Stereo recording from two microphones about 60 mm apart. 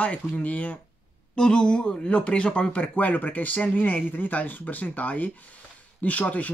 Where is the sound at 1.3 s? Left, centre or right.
Centre.